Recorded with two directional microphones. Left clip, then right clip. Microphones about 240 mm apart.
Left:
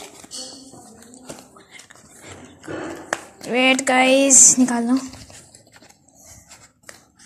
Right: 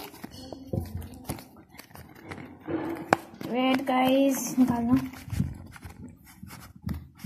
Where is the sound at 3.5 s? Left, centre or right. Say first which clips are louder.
Left 9 dB; left.